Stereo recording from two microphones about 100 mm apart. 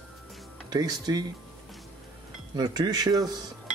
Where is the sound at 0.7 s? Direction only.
40° right (ahead or behind).